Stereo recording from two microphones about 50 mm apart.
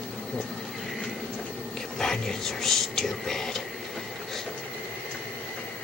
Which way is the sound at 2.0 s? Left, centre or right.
Centre.